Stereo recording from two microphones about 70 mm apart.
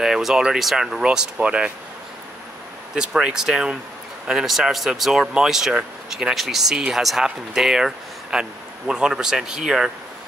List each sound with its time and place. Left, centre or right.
0.0 s speech: centre
2.9 s speech: centre